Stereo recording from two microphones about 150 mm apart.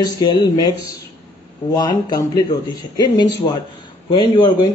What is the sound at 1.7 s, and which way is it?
A man's voice, 25° left (ahead or behind).